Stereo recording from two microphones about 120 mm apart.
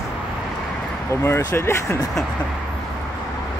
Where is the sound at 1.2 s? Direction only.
20° left (ahead or behind).